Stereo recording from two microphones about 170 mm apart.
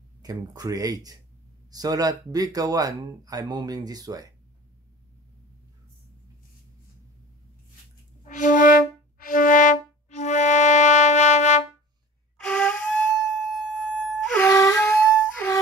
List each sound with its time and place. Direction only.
0.2 s speech: 20° right (ahead or behind)
8.2 s music: 50° left (ahead or behind)
12.4 s flute: 5° left (ahead or behind)
13.2 s music: centre (ahead or behind)
14.5 s a sound: 20° left (ahead or behind)
14.9 s music: 10° left (ahead or behind)